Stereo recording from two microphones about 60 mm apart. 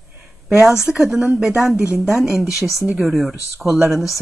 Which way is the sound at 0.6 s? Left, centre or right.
Centre.